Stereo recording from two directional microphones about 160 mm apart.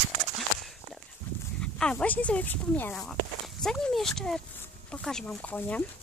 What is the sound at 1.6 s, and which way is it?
Speech, 5° left (ahead or behind).